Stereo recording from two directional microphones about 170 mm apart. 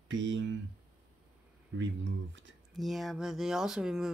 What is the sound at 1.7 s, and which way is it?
Speech, 90° right.